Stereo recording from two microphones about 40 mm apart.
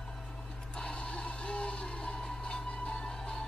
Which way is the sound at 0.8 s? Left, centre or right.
Left.